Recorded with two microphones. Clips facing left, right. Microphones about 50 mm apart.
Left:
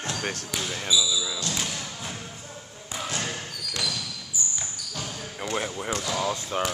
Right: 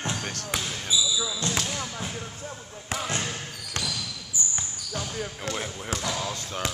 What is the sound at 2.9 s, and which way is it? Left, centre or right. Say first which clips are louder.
Basketball bounce: right 3 dB; right.